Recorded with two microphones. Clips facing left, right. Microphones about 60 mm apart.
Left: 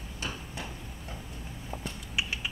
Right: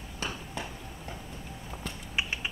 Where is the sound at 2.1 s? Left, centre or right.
Right.